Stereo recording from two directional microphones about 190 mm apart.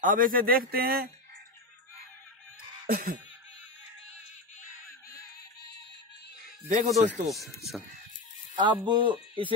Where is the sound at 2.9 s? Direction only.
50° right (ahead or behind).